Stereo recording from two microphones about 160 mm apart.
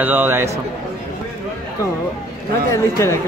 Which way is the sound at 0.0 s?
10° right (ahead or behind).